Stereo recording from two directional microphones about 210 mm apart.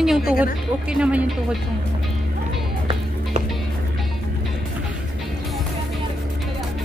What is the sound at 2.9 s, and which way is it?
Music, 30° right (ahead or behind).